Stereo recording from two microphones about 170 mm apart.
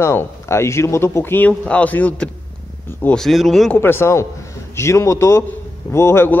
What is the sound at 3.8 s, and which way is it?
A man's voice, 15° left (ahead or behind).